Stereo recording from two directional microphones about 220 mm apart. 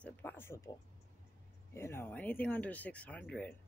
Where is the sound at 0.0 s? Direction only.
5° left (ahead or behind).